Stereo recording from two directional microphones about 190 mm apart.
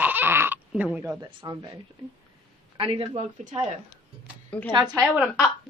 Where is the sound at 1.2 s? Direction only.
20° right (ahead or behind).